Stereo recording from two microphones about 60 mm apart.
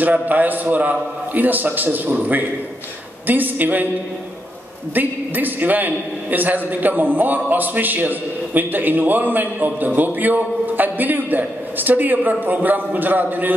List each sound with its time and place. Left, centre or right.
0.0 s a man's voice: right
4.9 s a man's voice: right